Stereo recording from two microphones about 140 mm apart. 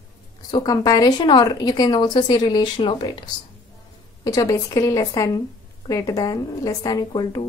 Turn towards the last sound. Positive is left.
turn(degrees=30)  # may be behind; listen again after turning